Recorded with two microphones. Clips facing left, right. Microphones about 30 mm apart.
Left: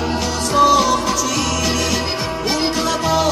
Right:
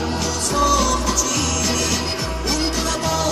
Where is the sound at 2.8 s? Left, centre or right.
Centre.